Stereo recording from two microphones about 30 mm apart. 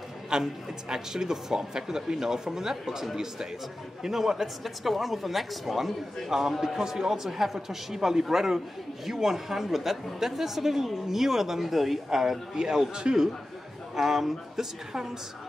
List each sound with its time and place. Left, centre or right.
0.3 s speech: right
4.0 s a man's voice: centre
4.6 s a man's voice: centre
12.6 s speech: right
13.9 s speech: centre